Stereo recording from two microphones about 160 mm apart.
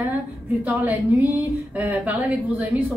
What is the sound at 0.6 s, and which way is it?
A woman's voice, 10° right (ahead or behind).